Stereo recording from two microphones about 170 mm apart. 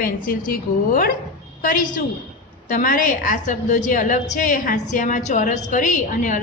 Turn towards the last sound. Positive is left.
turn(degrees=50)  # may be behind; listen again after turning